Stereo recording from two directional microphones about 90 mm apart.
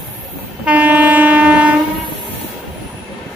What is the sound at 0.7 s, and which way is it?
Train, 15° right (ahead or behind).